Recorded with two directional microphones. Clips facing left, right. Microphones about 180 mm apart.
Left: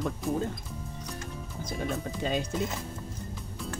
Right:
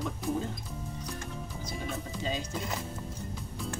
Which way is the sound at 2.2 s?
60° left (ahead or behind).